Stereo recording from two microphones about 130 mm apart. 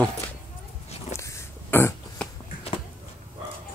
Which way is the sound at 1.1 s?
20° left (ahead or behind).